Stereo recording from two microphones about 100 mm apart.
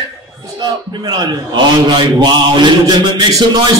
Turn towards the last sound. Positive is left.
turn(degrees=-45)  # may be behind; listen again after turning